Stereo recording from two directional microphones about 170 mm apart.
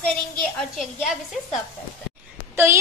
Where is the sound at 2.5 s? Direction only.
15° right (ahead or behind).